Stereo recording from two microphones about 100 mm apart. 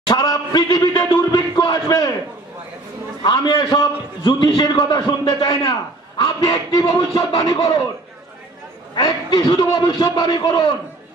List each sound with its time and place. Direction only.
0.1 s a sound: 40° left (ahead or behind)
3.3 s a man's voice: 45° left (ahead or behind)
8.9 s a man's voice: 45° left (ahead or behind)